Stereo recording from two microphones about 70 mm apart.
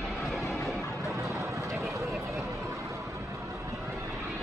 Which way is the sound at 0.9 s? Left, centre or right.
Right.